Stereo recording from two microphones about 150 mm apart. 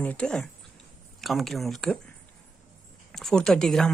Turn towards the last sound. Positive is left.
turn(degrees=5)  # may be behind; listen again after turning